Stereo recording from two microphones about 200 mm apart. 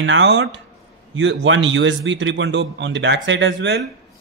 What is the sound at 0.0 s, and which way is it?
A man's voice, 65° right (ahead or behind).